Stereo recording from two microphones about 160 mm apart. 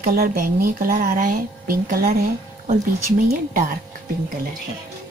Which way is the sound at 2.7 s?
55° right (ahead or behind).